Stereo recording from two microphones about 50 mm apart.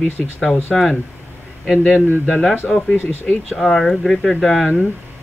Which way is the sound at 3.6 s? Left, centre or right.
Centre.